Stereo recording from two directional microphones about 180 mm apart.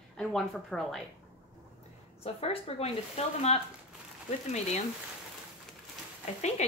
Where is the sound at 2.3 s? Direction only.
35° left (ahead or behind).